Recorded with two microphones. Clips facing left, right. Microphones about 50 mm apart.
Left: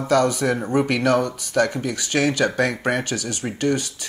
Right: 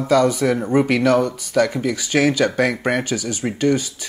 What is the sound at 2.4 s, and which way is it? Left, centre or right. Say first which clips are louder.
Speech: right 2 dB; right.